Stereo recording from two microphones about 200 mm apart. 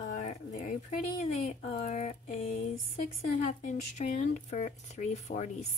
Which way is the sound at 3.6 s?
40° left (ahead or behind).